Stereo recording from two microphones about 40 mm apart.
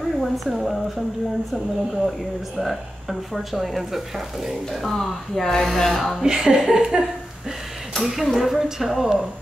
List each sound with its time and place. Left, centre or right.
0.2 s speech: centre
4.9 s speech: centre
6.2 s speech: centre
8.0 s speech: centre